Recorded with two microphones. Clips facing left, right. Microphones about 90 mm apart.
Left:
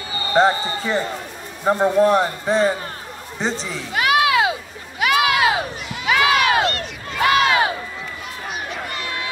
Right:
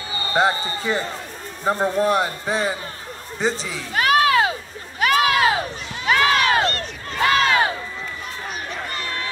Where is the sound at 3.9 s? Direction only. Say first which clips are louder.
Even; 40° right (ahead or behind).